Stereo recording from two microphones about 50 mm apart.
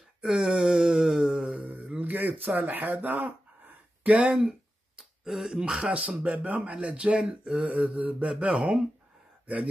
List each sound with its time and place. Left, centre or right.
0.2 s a sound: centre
1.7 s a sound: right
4.2 s speech: centre
5.2 s speech: centre
6.2 s speech: right
7.6 s speech: right